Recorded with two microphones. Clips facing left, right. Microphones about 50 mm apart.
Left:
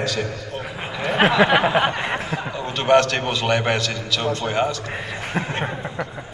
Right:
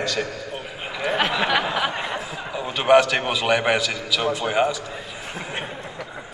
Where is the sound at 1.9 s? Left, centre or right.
Left.